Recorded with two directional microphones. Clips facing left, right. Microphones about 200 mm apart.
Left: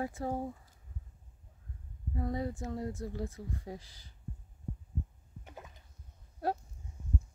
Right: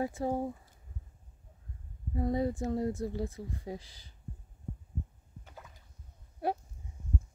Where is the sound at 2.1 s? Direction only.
25° right (ahead or behind).